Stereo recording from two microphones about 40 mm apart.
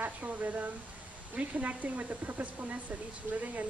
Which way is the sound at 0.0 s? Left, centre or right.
Right.